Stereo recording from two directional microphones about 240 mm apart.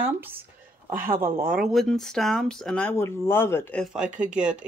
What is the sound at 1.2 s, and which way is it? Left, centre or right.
Speech, right.